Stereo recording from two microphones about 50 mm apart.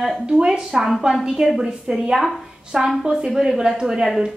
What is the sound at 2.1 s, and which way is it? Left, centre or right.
Speech, centre.